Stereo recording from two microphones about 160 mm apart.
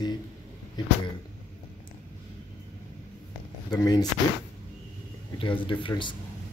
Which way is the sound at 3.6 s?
25° left (ahead or behind).